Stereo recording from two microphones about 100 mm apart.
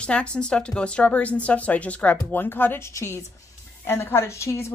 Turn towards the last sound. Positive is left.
turn(degrees=30)  # may be behind; listen again after turning